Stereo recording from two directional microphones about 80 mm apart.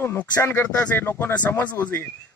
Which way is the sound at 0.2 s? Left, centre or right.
Centre.